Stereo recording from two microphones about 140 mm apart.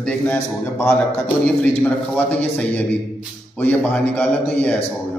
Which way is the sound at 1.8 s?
10° left (ahead or behind).